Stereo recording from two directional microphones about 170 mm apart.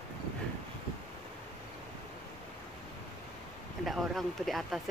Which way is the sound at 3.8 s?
Centre (ahead or behind).